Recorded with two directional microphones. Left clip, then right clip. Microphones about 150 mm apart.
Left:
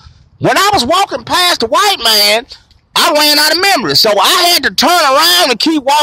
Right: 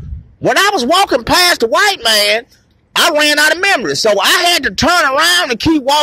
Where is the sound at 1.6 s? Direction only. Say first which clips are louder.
Left 1 dB; 20° left (ahead or behind).